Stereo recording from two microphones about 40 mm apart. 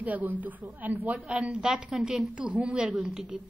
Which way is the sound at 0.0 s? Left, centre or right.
Right.